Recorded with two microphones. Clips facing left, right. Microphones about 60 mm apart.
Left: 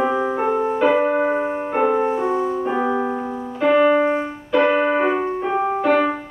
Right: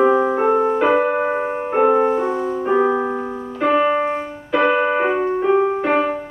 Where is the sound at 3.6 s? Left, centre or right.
Centre.